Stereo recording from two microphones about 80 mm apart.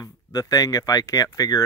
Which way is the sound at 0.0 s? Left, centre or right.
Left.